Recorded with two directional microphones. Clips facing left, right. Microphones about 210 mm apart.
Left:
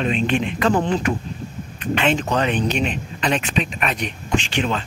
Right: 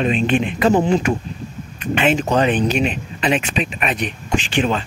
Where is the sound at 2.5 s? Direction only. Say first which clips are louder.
Right 3 dB; 5° right (ahead or behind).